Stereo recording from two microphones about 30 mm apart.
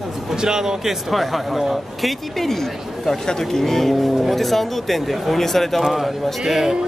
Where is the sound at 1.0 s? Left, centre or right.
Centre.